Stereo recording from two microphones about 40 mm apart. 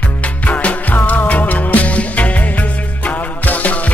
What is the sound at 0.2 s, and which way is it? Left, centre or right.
Music, left.